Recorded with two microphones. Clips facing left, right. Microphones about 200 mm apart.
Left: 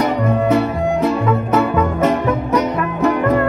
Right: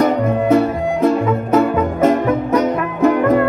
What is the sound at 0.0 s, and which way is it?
Music, 50° right (ahead or behind).